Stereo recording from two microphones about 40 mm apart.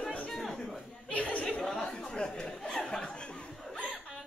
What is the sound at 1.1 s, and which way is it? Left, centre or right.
Chatter, left.